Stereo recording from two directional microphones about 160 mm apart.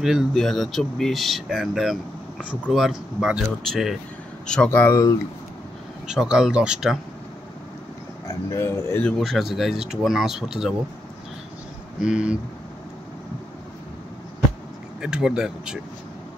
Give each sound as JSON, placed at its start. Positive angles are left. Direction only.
{"t": 0.0, "sound": "speech", "side_deg": -5}
{"t": 4.6, "sound": "speech", "side_deg": 15}
{"t": 6.0, "sound": "speech", "side_deg": -5}
{"t": 8.5, "sound": "speech", "side_deg": 20}
{"t": 9.0, "sound": "speech", "side_deg": 0}
{"t": 12.0, "sound": "speech", "side_deg": -5}
{"t": 15.0, "sound": "speech", "side_deg": -5}